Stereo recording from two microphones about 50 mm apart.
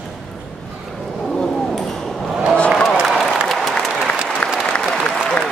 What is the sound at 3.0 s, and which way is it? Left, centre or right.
Applause, centre.